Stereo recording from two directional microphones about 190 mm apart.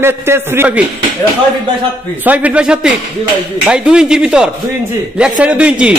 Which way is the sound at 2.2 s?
10° right (ahead or behind).